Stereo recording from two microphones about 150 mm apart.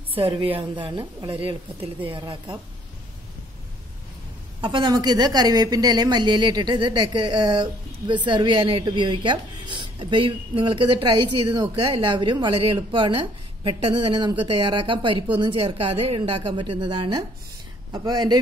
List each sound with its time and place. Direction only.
0.1 s a woman's voice: 35° right (ahead or behind)
4.6 s a woman's voice: 30° right (ahead or behind)
12.2 s a woman's voice: 30° right (ahead or behind)